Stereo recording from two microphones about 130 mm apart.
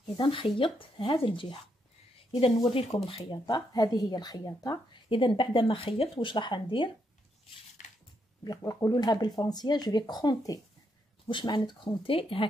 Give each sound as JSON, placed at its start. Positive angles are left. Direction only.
{"t": 0.2, "sound": "speech", "side_deg": 40}
{"t": 2.6, "sound": "speech", "side_deg": 45}
{"t": 5.1, "sound": "speech", "side_deg": 40}
{"t": 7.8, "sound": "a sound", "side_deg": 75}
{"t": 8.5, "sound": "speech", "side_deg": 30}